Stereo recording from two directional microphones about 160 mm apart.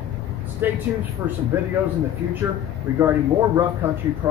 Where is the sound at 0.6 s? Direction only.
10° right (ahead or behind).